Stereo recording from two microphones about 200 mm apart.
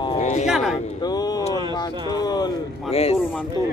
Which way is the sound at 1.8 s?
20° left (ahead or behind).